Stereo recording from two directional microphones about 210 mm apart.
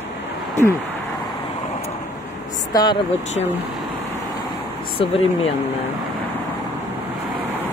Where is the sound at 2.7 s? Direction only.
20° left (ahead or behind).